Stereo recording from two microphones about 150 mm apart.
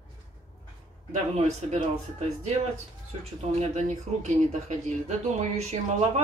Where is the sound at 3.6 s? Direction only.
50° right (ahead or behind).